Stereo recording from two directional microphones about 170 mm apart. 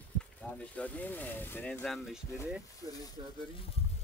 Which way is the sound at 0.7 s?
10° left (ahead or behind).